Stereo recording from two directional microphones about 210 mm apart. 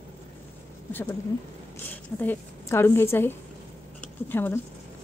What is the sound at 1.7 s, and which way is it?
A woman's voice, 10° left (ahead or behind).